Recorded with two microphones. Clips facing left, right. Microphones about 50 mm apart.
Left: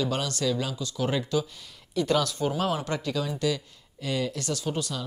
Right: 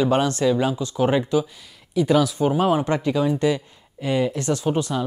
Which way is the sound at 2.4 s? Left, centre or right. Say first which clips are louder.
Right 8 dB; right.